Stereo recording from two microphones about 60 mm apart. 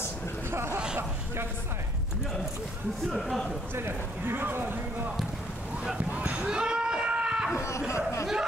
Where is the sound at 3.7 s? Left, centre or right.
Right.